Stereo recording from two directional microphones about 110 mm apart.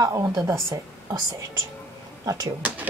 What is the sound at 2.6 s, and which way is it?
Speech, 15° right (ahead or behind).